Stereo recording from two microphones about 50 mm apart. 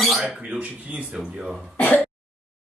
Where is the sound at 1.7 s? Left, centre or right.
Left.